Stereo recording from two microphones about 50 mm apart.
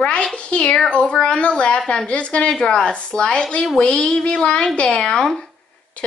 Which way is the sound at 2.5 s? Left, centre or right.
Centre.